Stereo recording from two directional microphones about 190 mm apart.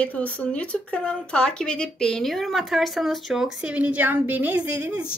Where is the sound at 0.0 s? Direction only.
5° left (ahead or behind).